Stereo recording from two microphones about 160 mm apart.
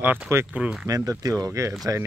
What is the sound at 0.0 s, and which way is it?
Speech, 10° right (ahead or behind).